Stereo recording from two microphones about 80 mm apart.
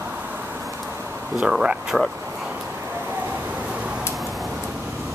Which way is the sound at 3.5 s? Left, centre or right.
Centre.